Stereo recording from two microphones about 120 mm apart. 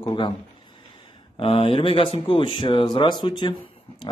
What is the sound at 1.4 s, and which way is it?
Speech, 50° left (ahead or behind).